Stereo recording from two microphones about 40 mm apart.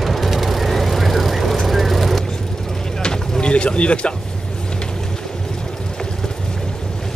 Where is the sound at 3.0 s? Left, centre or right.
Left.